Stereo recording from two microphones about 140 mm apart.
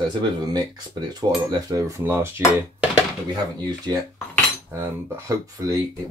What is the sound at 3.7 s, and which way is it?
Speech, 25° right (ahead or behind).